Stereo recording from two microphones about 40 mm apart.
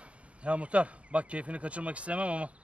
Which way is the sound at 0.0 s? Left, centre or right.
Right.